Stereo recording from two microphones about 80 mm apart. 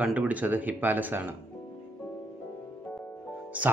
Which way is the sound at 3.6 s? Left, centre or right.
Centre.